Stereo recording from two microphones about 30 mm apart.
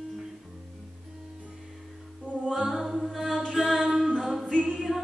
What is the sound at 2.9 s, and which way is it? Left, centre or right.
Chant, centre.